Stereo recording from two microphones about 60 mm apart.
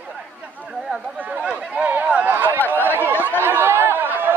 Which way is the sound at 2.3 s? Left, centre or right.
Right.